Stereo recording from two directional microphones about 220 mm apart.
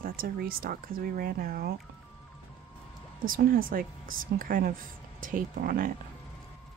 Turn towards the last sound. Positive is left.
turn(degrees=-40)  # may be behind; listen again after turning